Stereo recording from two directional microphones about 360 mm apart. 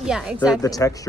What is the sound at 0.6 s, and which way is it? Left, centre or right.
Speech, centre.